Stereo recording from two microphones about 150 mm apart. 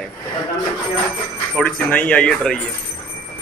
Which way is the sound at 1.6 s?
10° left (ahead or behind).